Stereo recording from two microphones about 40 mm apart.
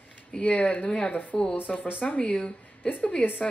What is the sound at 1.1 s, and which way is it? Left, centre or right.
Speech, left.